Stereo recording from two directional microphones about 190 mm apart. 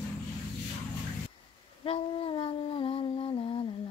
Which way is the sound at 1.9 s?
30° left (ahead or behind).